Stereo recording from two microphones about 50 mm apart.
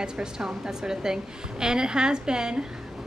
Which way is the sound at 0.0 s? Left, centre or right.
Centre.